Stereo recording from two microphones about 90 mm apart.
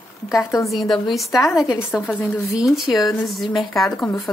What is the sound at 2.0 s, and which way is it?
Speech, 20° left (ahead or behind).